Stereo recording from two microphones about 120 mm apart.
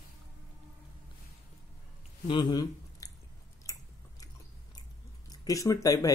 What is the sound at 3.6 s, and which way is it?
Biting, 30° left (ahead or behind).